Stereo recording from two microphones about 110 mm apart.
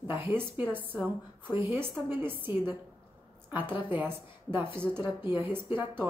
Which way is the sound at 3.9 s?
15° right (ahead or behind).